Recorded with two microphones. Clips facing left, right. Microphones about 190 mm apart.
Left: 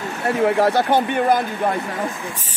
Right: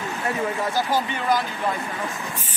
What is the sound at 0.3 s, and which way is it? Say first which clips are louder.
Speech: left 10 dB; 70° left (ahead or behind).